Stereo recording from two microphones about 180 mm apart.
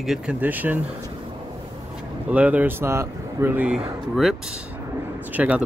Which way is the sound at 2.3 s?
10° right (ahead or behind).